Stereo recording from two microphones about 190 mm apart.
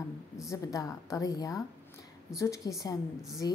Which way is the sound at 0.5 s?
15° left (ahead or behind).